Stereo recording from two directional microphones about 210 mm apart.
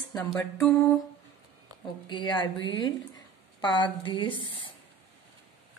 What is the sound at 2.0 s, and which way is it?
A woman's voice, 20° left (ahead or behind).